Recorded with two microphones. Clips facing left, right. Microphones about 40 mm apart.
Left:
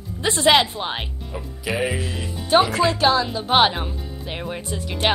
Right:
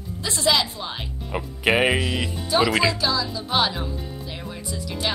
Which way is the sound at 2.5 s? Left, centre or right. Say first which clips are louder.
Left 4 dB; left.